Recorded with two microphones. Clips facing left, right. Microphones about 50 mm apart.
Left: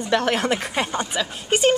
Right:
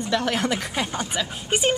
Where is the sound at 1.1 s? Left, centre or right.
Centre.